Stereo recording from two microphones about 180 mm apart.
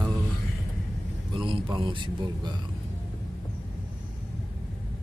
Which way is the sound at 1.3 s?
30° right (ahead or behind).